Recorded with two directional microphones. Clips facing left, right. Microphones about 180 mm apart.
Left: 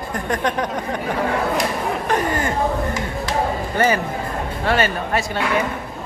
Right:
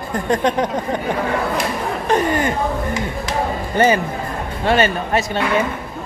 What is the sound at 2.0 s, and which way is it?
Chatter, 25° right (ahead or behind).